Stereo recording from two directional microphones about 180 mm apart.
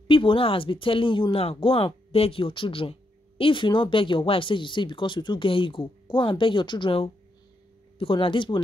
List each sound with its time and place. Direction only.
0.1 s speech: 30° left (ahead or behind)